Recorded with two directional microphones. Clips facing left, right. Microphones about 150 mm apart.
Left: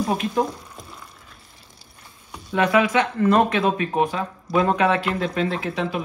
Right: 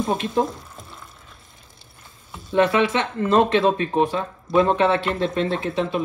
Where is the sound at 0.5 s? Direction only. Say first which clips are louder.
Left 1 dB; centre (ahead or behind).